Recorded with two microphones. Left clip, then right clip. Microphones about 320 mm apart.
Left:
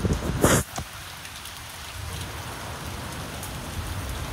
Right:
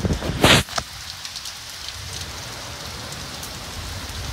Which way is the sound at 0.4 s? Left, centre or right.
Right.